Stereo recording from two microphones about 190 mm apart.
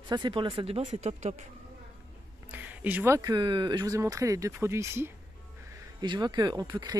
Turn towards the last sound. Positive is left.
turn(degrees=-20)  # may be behind; listen again after turning